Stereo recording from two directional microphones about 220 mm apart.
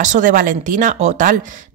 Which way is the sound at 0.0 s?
35° right (ahead or behind).